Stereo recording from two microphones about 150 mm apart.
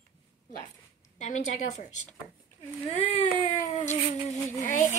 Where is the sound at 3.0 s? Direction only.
50° left (ahead or behind).